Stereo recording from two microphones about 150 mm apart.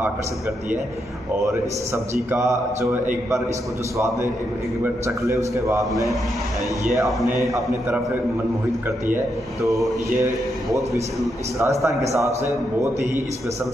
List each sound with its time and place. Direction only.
5.0 s a man's voice: 20° right (ahead or behind)
7.4 s a man's voice: centre (ahead or behind)
9.1 s a man's voice: 20° right (ahead or behind)